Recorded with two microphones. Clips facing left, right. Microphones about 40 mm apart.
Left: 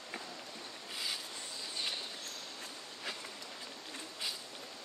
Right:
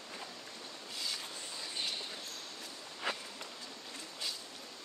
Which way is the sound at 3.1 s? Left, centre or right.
Right.